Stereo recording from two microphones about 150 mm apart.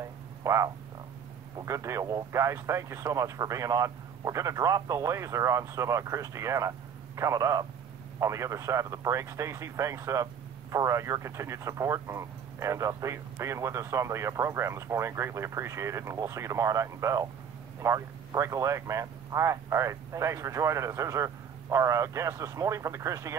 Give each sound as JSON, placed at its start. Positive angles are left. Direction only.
{"t": 0.0, "sound": "frog", "side_deg": -20}
{"t": 1.6, "sound": "speech", "side_deg": -20}